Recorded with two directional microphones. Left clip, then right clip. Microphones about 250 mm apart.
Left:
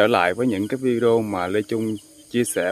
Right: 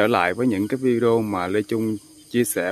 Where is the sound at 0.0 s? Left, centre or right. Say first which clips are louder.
Left 1 dB; centre.